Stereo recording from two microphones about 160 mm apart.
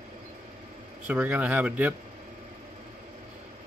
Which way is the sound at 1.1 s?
10° right (ahead or behind).